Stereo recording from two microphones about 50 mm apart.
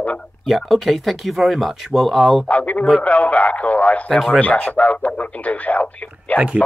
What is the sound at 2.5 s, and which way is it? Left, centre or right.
Speech, left.